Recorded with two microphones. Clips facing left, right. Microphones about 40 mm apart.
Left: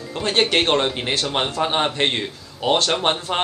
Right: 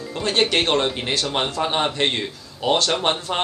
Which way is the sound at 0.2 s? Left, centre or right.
Centre.